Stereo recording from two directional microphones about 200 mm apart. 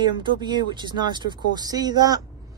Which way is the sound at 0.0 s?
20° right (ahead or behind).